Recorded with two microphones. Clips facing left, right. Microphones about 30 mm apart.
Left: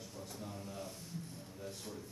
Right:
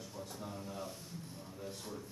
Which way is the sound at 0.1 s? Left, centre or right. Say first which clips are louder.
Right 2 dB; centre.